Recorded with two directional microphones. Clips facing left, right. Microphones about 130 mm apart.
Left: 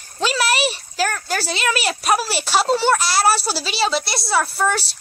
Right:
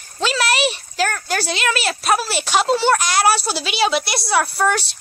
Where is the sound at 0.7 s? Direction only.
5° left (ahead or behind).